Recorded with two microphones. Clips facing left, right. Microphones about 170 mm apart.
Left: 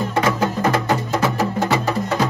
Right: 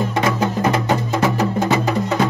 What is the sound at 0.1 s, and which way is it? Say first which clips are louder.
Music: even; 15° right (ahead or behind).